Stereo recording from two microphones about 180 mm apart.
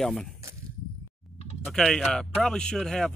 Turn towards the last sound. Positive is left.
turn(degrees=5)  # may be behind; listen again after turning